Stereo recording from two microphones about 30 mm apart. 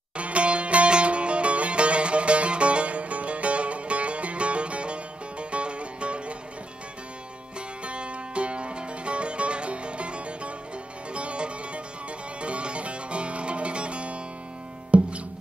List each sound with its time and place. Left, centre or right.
0.2 s sitar: right
7.8 s music: right